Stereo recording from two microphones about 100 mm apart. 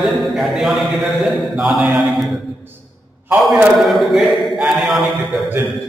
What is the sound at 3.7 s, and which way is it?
Speech, centre (ahead or behind).